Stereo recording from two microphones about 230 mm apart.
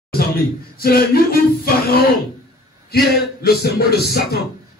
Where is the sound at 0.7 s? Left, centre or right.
Left.